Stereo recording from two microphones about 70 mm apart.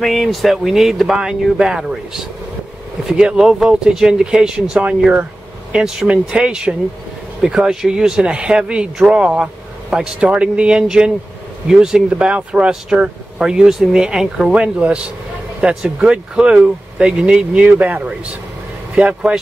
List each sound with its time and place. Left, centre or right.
0.0 s speech: centre